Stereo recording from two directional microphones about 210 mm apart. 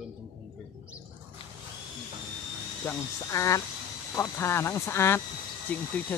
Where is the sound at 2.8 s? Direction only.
15° left (ahead or behind).